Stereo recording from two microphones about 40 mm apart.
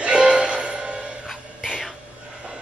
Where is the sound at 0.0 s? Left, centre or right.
Right.